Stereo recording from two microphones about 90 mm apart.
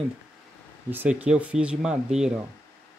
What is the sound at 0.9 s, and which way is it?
Speech, 20° right (ahead or behind).